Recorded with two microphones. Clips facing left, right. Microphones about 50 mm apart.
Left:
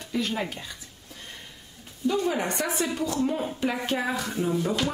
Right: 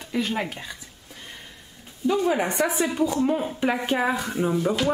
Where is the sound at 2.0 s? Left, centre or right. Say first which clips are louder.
Right 3 dB; centre.